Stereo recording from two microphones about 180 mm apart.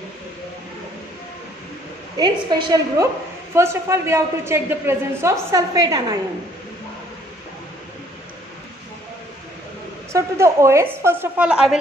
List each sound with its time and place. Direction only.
2.1 s a woman's voice: 20° right (ahead or behind)
10.1 s a woman's voice: 15° right (ahead or behind)